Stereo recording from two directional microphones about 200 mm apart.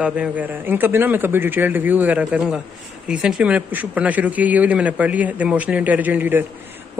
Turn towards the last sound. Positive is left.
turn(degrees=-10)  # may be behind; listen again after turning